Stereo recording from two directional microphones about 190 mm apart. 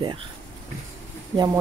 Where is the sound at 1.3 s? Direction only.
20° right (ahead or behind).